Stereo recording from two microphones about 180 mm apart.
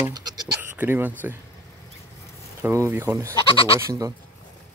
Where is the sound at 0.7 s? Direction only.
10° right (ahead or behind).